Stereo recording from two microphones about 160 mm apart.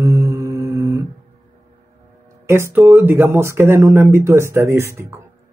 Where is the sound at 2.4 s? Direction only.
15° right (ahead or behind).